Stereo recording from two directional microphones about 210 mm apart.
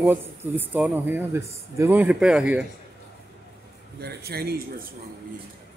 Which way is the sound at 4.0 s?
50° right (ahead or behind).